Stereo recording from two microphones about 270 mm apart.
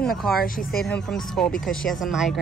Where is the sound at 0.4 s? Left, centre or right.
Left.